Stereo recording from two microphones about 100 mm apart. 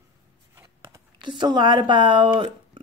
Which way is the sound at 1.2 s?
50° right (ahead or behind).